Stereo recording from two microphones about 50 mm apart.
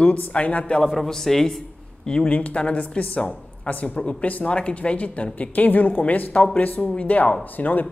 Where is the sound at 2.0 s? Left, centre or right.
Centre.